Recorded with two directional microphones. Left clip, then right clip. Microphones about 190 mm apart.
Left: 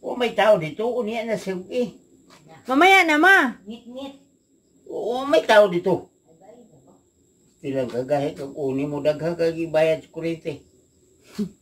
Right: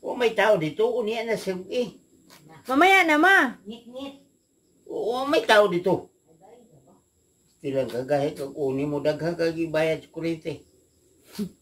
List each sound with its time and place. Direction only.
0.0 s speech: centre (ahead or behind)
2.7 s speech: 5° left (ahead or behind)
4.8 s speech: centre (ahead or behind)
7.6 s speech: centre (ahead or behind)